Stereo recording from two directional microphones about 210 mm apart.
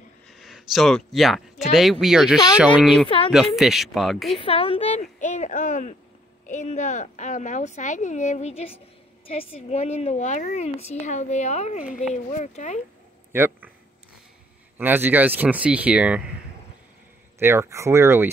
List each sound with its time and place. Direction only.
0.3 s speech: centre (ahead or behind)
4.4 s a woman's voice: 25° left (ahead or behind)
13.3 s speech: 10° right (ahead or behind)
14.8 s speech: 10° right (ahead or behind)
17.4 s speech: 10° right (ahead or behind)